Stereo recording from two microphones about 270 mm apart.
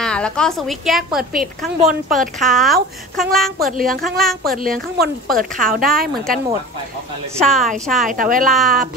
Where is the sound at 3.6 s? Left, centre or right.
Right.